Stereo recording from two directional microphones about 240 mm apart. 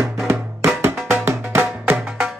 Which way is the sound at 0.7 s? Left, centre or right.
Centre.